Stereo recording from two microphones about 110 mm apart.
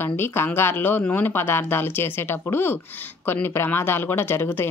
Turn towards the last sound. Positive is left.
turn(degrees=20)  # may be behind; listen again after turning